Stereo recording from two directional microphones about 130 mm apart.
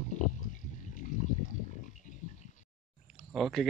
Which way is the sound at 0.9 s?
70° left (ahead or behind).